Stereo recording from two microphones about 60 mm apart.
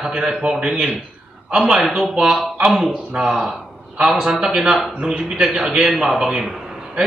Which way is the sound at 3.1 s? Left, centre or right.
Centre.